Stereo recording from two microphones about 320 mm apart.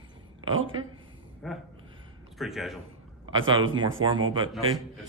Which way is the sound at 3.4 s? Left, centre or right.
Centre.